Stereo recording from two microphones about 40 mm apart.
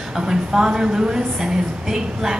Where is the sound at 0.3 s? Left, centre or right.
Centre.